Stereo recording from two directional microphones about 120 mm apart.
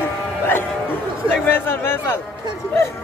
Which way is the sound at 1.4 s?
15° left (ahead or behind).